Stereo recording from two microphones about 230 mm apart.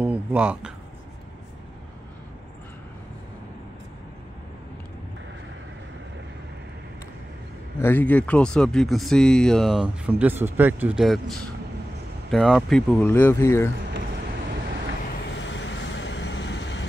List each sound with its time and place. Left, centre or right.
0.0 s a sound: centre
7.8 s speech: centre
15.3 s vehicle: left